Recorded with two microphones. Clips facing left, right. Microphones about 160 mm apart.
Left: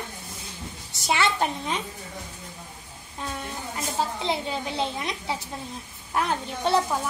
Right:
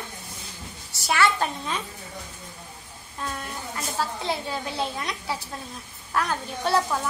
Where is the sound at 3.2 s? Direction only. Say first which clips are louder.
Even; 20° left (ahead or behind).